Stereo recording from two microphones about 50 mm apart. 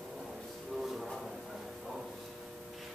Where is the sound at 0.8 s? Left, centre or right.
Centre.